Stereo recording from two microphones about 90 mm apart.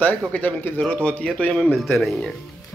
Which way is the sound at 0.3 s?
20° left (ahead or behind).